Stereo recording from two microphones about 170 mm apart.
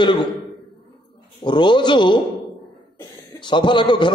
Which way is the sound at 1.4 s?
25° left (ahead or behind).